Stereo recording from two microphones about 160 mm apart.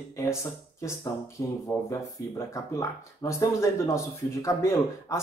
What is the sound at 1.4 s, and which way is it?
Speech, 20° left (ahead or behind).